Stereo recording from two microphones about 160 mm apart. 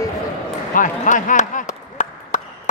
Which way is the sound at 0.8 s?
55° left (ahead or behind).